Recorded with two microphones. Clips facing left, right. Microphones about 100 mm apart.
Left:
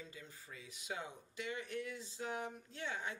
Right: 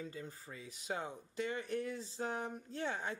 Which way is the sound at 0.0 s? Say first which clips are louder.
Right 7 dB; 40° right (ahead or behind).